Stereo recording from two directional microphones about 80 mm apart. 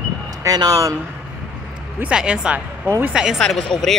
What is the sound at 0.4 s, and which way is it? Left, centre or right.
Speech, right.